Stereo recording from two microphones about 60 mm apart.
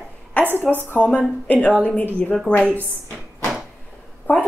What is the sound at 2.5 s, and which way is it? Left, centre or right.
Speech, centre.